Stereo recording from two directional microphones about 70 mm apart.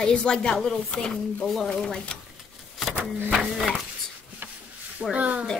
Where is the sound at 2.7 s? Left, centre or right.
Centre.